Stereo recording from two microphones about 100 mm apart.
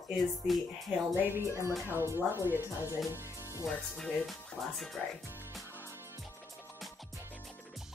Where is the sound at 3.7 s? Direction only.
Centre (ahead or behind).